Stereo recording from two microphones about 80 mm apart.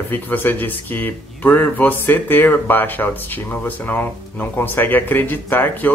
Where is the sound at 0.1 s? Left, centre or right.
Left.